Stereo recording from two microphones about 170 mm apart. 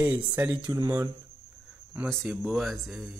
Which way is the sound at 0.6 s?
25° right (ahead or behind).